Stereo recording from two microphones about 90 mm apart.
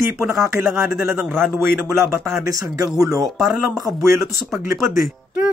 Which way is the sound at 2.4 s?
40° right (ahead or behind).